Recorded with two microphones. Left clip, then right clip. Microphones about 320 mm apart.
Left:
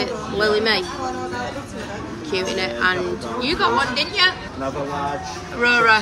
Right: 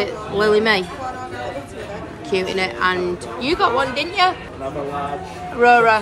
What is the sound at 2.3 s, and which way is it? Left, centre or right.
A woman's voice, centre.